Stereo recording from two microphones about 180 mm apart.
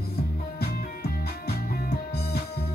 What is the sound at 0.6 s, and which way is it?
Music, 60° left (ahead or behind).